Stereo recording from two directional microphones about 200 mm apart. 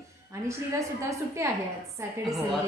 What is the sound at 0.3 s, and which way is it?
A woman's voice, 15° right (ahead or behind).